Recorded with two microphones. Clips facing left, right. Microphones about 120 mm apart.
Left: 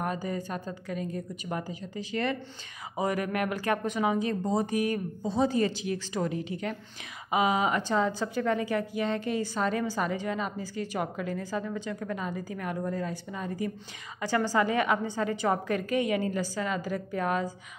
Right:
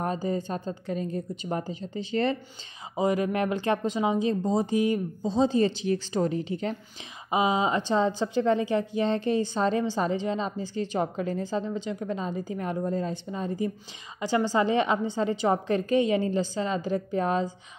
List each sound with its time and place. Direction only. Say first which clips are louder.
0.0 s a woman's voice: right 3 dB; 30° right (ahead or behind)